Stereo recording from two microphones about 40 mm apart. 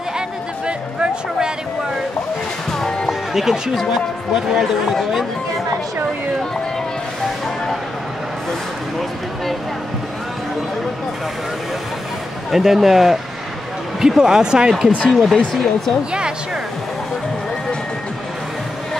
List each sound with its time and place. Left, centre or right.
0.7 s music: right
3.1 s music: centre
3.9 s speech: centre
12.4 s speech: centre
15.0 s speech: centre
16.1 s speech: right